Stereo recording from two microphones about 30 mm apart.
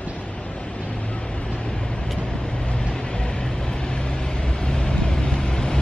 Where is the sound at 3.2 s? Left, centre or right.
Left.